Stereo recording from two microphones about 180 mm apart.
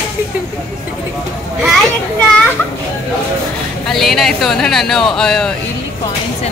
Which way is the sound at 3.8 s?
Centre (ahead or behind).